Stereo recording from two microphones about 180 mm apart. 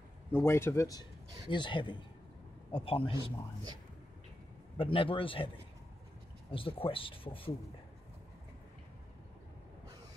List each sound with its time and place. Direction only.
0.3 s speech: 15° left (ahead or behind); by 3.2 s 30° left (ahead or behind)
4.7 s speech: 30° left (ahead or behind)
6.5 s speech: 30° left (ahead or behind)